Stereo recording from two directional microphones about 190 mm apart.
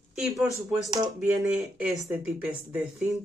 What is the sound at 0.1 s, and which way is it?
Speech, 5° right (ahead or behind).